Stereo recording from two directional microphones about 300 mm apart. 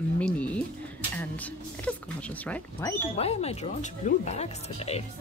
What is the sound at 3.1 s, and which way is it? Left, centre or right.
Speech, left.